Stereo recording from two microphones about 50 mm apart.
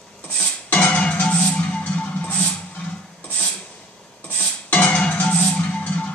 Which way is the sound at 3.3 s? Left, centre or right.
Left.